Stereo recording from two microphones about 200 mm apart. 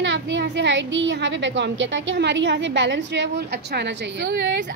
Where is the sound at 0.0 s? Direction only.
60° right (ahead or behind).